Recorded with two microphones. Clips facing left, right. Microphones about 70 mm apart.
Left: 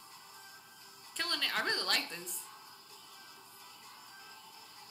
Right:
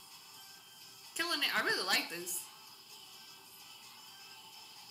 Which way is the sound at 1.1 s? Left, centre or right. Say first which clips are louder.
Right 1 dB; centre.